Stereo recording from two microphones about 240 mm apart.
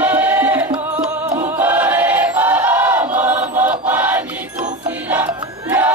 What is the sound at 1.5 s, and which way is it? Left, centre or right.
Choir, centre.